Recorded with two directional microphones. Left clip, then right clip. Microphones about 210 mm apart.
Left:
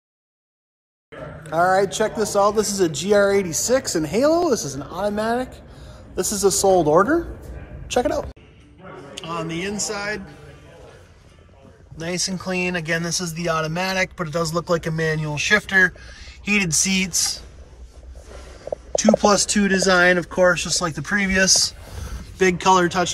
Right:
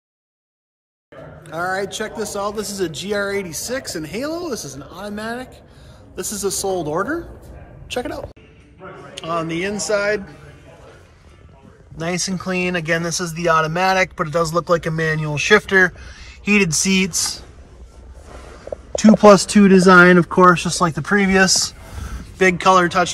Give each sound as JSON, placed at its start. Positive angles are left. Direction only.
{"t": 1.4, "sound": "speech", "side_deg": 0}
{"t": 9.2, "sound": "a man's voice", "side_deg": 10}
{"t": 12.0, "sound": "speech", "side_deg": 5}
{"t": 18.9, "sound": "speech", "side_deg": -15}
{"t": 20.5, "sound": "speech", "side_deg": -5}
{"t": 21.9, "sound": "a sound", "side_deg": 15}